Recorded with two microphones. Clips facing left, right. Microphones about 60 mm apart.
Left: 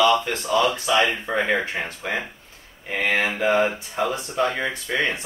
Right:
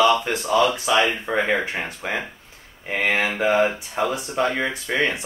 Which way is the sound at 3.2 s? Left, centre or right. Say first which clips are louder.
Right 1 dB; centre.